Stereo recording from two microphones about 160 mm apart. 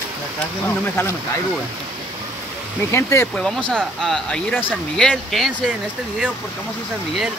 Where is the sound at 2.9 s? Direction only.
15° left (ahead or behind).